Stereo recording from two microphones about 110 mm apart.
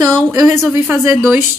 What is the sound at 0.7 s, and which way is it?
Speech, 15° right (ahead or behind).